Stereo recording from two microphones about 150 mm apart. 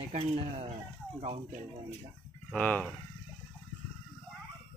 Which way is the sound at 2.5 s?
10° left (ahead or behind).